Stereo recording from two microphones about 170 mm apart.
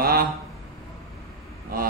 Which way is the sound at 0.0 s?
60° right (ahead or behind).